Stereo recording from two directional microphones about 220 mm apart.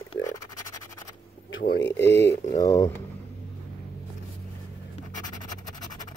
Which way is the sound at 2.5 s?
15° left (ahead or behind).